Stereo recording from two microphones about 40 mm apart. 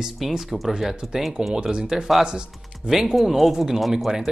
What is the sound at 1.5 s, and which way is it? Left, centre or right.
Speech, right.